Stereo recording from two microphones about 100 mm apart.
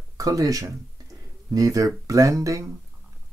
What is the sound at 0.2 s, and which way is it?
Speech, 35° right (ahead or behind).